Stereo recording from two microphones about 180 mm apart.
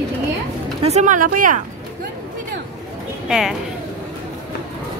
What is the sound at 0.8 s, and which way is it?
Speech, 40° right (ahead or behind).